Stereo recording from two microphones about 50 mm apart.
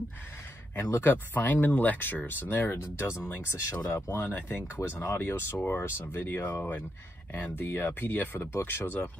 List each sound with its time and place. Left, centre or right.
0.7 s speech: left
1.0 s speech: left
3.3 s speech: left